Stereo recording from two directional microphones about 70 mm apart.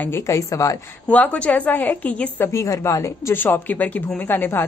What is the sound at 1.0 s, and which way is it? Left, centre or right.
A woman's voice, left.